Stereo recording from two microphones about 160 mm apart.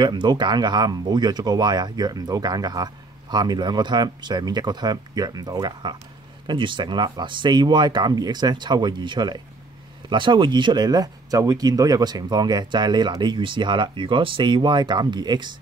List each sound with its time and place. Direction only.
0.0 s speech: 30° right (ahead or behind)